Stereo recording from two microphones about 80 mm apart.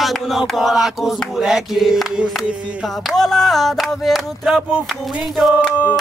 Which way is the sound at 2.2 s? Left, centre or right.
Centre.